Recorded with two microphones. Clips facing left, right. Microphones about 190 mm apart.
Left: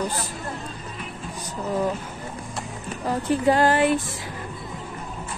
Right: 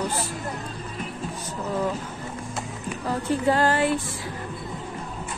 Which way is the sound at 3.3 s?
15° left (ahead or behind).